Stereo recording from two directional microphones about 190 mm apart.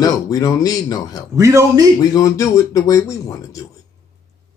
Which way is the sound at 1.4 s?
15° right (ahead or behind).